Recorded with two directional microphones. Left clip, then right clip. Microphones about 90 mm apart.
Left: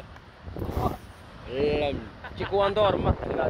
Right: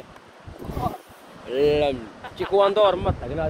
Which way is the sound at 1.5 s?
65° right (ahead or behind).